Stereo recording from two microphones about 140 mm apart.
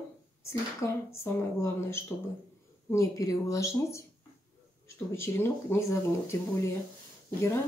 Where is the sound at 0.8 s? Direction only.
20° left (ahead or behind).